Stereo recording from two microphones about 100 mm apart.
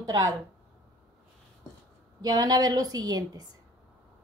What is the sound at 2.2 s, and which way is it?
Speech, 40° right (ahead or behind).